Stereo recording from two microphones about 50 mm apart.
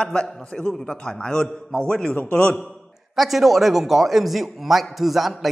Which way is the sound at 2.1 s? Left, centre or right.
Left.